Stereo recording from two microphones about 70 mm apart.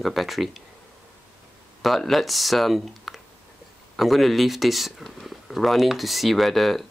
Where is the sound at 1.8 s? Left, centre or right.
Centre.